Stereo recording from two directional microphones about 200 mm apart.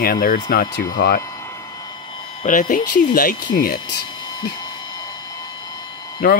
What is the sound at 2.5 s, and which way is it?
Speech, 45° left (ahead or behind).